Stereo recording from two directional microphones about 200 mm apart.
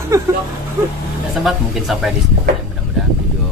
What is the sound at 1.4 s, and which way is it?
Speech, centre (ahead or behind).